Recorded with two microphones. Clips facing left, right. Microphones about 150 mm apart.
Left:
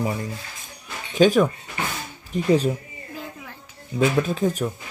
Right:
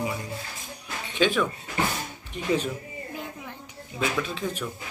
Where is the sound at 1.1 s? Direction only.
40° left (ahead or behind).